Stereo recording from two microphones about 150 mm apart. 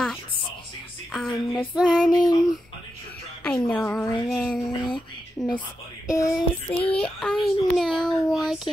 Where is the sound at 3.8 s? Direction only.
15° left (ahead or behind).